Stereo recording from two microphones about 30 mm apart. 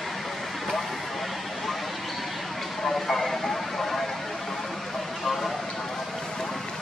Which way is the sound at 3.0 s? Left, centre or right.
Centre.